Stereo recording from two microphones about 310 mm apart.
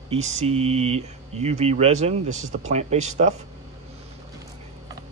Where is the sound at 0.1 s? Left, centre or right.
Right.